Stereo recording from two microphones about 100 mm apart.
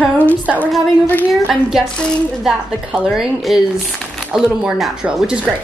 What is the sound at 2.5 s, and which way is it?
Speech, 5° right (ahead or behind).